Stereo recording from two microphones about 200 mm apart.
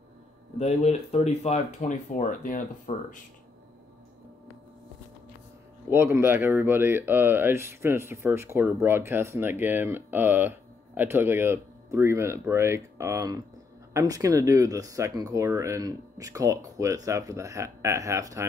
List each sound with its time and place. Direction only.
0.6 s speech: 35° left (ahead or behind)
5.9 s speech: 10° right (ahead or behind)